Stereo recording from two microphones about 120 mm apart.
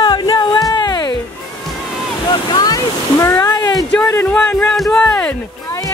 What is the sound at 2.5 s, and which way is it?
Waves, 35° left (ahead or behind).